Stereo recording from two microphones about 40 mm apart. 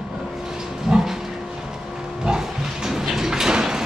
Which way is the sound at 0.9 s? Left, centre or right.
Centre.